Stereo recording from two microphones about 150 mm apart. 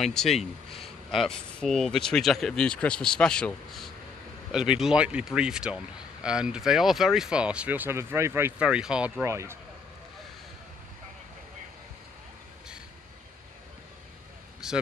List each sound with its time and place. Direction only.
0.0 s speech: centre (ahead or behind)
9.2 s speech: 20° right (ahead or behind)
14.6 s a sound: 5° right (ahead or behind)